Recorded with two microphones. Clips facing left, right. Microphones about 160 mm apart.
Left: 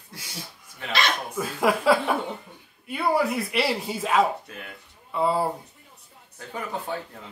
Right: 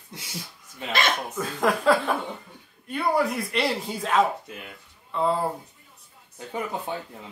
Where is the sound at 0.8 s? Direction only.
15° right (ahead or behind).